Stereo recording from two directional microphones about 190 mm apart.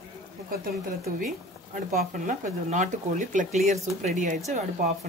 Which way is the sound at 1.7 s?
40° right (ahead or behind).